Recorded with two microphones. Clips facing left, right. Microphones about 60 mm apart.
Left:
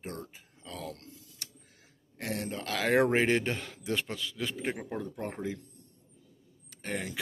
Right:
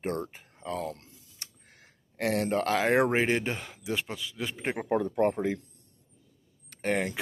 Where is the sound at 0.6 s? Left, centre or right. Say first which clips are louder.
Right 7 dB; right.